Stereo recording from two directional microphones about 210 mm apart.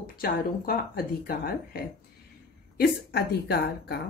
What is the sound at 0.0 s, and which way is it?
A woman's voice, 45° left (ahead or behind).